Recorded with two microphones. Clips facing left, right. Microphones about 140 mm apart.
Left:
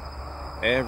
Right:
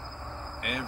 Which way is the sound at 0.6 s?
55° left (ahead or behind).